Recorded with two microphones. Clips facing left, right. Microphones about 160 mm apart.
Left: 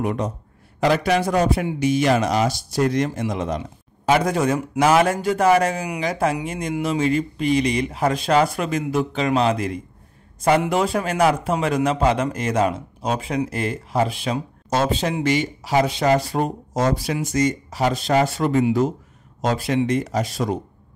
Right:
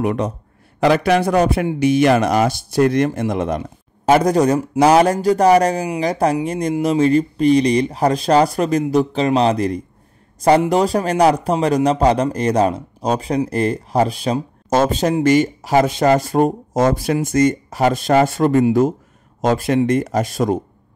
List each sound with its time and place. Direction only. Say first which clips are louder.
0.0 s a man's voice: right 4 dB; 70° right (ahead or behind); by 20.5 s 50° right (ahead or behind)